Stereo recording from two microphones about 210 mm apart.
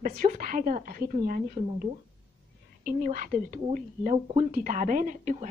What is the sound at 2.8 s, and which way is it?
A woman's voice, 40° right (ahead or behind).